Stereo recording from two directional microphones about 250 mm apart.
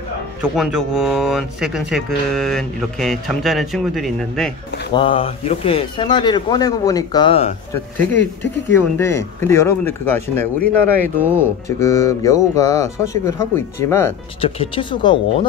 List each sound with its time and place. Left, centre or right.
0.4 s speech: centre
4.9 s a man's voice: left
7.7 s speech: centre
11.8 s speech: centre
14.4 s a man's voice: left